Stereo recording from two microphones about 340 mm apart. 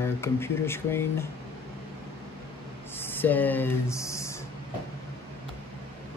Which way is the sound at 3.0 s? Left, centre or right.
Centre.